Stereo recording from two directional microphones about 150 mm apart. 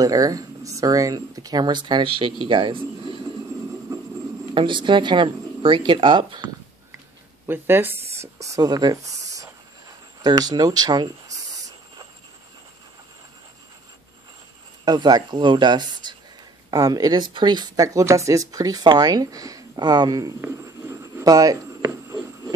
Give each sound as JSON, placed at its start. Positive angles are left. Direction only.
{"t": 0.0, "sound": "speech", "side_deg": -25}
{"t": 4.6, "sound": "speech", "side_deg": -30}
{"t": 7.4, "sound": "speech", "side_deg": -15}
{"t": 14.9, "sound": "speech", "side_deg": -25}